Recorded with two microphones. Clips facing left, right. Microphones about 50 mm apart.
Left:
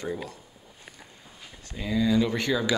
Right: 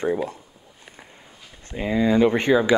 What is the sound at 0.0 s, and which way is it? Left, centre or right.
Speech, right.